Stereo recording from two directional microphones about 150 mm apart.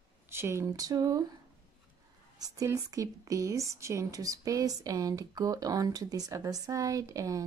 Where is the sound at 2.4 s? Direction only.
25° right (ahead or behind).